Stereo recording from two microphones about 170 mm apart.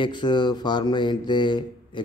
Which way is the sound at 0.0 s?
25° left (ahead or behind).